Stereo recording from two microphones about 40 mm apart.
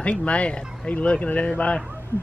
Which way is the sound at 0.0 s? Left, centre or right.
Left.